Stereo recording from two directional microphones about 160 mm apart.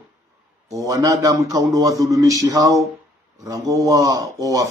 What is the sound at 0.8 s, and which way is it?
A man's voice, 20° right (ahead or behind).